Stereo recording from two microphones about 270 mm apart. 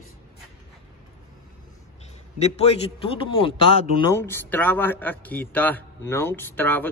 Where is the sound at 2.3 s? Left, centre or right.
Left.